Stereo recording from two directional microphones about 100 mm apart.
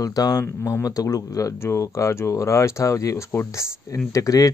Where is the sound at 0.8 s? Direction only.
35° left (ahead or behind).